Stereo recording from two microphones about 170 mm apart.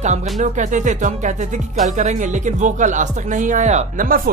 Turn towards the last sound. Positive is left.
turn(degrees=-55)  # may be behind; listen again after turning